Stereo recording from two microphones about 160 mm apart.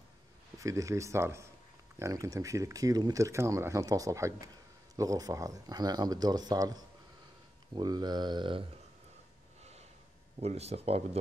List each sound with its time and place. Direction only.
0.6 s speech: 20° right (ahead or behind)
10.4 s speech: 40° right (ahead or behind)